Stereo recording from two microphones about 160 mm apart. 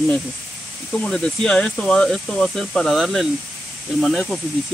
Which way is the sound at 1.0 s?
5° left (ahead or behind).